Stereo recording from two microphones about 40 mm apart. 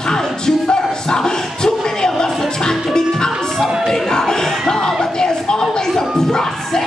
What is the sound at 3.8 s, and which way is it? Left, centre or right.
Music, centre.